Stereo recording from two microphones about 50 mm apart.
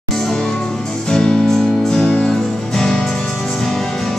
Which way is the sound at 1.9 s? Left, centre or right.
Centre.